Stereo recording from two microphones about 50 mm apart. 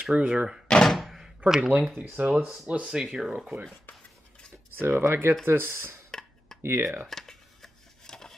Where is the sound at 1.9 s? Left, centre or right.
Right.